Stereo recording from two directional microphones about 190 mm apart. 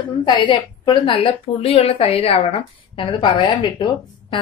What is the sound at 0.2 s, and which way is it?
A woman's voice, 25° left (ahead or behind).